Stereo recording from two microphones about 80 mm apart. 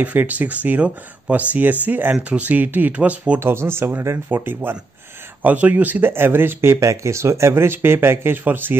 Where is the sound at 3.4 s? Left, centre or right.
Right.